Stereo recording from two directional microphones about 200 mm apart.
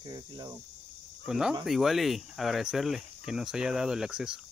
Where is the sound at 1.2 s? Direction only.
5° right (ahead or behind).